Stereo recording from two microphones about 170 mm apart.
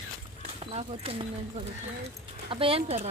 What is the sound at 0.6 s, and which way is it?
Speech, 35° right (ahead or behind).